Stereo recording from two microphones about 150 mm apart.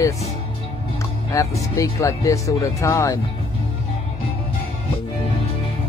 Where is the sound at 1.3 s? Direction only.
20° left (ahead or behind).